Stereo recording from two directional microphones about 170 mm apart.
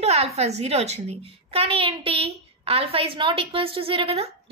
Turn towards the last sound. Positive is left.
turn(degrees=-35)  # may be behind; listen again after turning